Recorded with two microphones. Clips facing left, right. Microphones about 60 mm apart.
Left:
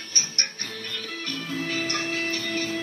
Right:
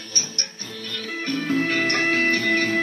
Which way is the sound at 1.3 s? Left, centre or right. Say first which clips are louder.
Right 8 dB; right.